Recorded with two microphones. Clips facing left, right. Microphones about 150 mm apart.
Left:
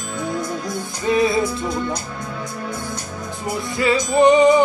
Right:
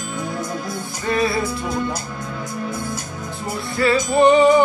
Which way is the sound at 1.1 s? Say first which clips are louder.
Left 3 dB; 20° left (ahead or behind).